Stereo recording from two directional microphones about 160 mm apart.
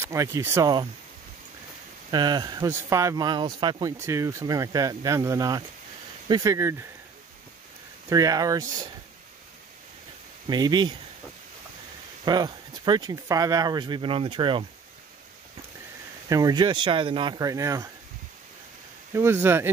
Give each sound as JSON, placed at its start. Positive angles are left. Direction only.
{"t": 0.0, "sound": "speech", "side_deg": -20}
{"t": 2.0, "sound": "speech", "side_deg": -25}
{"t": 8.1, "sound": "speech", "side_deg": -20}
{"t": 10.5, "sound": "speech", "side_deg": -25}
{"t": 12.3, "sound": "speech", "side_deg": -25}
{"t": 16.3, "sound": "speech", "side_deg": -20}
{"t": 19.1, "sound": "speech", "side_deg": -15}